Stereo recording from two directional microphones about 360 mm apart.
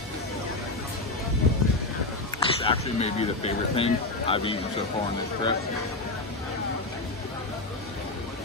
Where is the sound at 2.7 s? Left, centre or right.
Centre.